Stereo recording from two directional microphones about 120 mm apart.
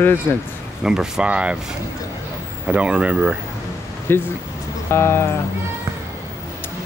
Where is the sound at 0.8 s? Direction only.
5° right (ahead or behind).